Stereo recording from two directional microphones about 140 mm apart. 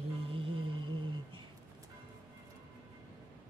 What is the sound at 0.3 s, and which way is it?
Music, 40° right (ahead or behind).